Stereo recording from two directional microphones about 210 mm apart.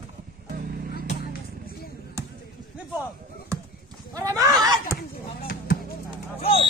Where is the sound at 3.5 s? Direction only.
15° right (ahead or behind).